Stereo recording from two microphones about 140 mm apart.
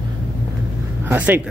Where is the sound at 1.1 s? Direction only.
15° right (ahead or behind).